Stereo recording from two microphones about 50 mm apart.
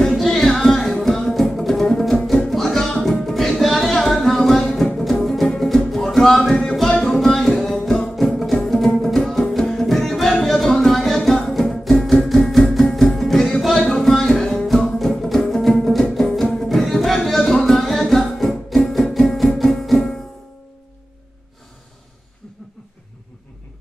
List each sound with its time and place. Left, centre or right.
0.0 s music: centre
13.7 s a sound: centre
14.0 s music: centre